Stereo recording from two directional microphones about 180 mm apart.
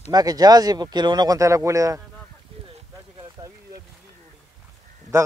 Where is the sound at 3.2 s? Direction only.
20° right (ahead or behind).